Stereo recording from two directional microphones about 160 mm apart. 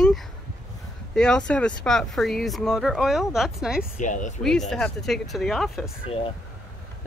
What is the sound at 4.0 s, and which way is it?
Speech, 50° left (ahead or behind).